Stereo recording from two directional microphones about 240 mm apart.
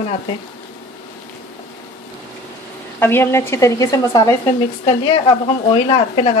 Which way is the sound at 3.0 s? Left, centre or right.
Centre.